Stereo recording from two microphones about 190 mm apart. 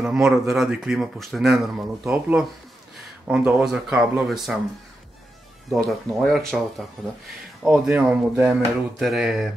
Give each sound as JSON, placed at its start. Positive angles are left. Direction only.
{"t": 0.0, "sound": "speech", "side_deg": 0}
{"t": 5.7, "sound": "speech", "side_deg": 0}
{"t": 7.6, "sound": "speech", "side_deg": -5}